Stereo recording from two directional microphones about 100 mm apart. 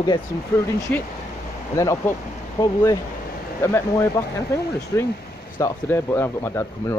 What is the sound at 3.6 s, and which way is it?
Speech, 25° left (ahead or behind).